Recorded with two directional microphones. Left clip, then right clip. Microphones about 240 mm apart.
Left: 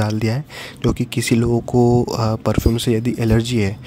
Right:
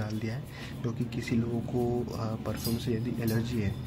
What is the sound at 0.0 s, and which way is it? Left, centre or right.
Speech, left.